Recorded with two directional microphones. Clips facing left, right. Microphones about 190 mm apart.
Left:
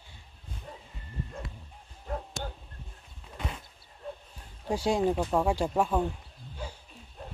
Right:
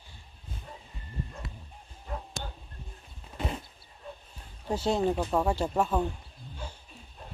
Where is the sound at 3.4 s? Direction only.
30° right (ahead or behind).